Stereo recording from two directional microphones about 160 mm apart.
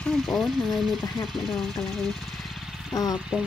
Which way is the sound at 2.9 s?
20° left (ahead or behind).